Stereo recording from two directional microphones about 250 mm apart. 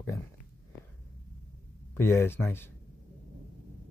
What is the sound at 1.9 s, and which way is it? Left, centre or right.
Speech, centre.